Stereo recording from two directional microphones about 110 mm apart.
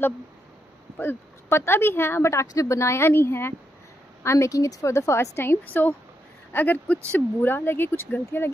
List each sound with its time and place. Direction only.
0.9 s a woman's voice: 20° left (ahead or behind)